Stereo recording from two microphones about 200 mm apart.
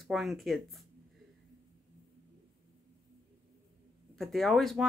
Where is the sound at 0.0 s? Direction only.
Centre (ahead or behind).